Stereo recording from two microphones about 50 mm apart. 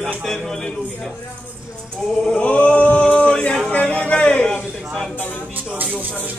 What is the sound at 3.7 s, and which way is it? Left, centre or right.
Speech, left.